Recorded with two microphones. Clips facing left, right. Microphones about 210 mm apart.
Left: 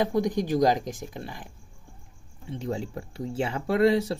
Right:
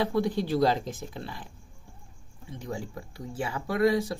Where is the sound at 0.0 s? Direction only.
15° left (ahead or behind).